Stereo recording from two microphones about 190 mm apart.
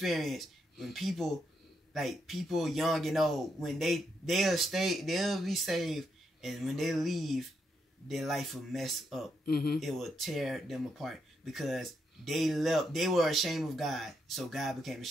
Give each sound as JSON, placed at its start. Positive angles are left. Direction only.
{"t": 0.0, "sound": "speech", "side_deg": 0}
{"t": 9.5, "sound": "speech", "side_deg": 55}
{"t": 9.8, "sound": "speech", "side_deg": 0}